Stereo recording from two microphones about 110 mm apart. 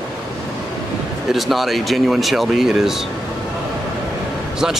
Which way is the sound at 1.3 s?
Centre (ahead or behind).